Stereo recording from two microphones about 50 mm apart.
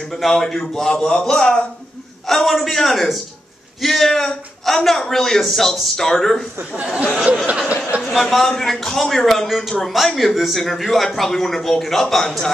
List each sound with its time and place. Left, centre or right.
0.0 s a man's voice: centre
2.2 s a man's voice: centre
6.8 s speech: right
8.0 s a man's voice: centre